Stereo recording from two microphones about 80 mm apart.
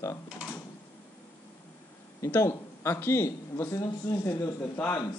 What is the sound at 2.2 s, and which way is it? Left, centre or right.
Speech, left.